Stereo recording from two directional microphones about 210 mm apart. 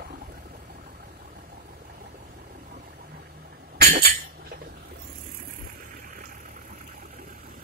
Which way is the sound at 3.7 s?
50° right (ahead or behind).